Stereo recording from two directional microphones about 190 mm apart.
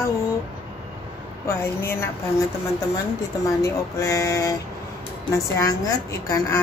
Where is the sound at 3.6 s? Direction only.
15° left (ahead or behind).